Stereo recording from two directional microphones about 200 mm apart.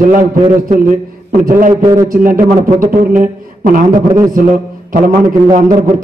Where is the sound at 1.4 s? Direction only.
45° right (ahead or behind).